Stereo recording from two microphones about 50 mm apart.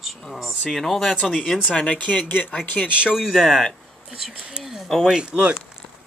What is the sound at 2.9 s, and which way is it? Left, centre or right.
Speech, right.